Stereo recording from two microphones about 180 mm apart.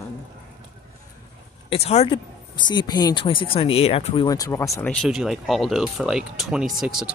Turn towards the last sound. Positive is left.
turn(degrees=0)  # may be behind; listen again after turning